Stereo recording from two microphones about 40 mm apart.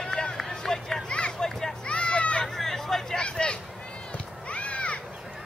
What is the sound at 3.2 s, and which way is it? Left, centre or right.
Vehicle, left.